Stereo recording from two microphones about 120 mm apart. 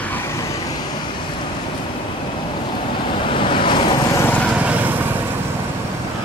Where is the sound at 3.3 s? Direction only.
45° left (ahead or behind).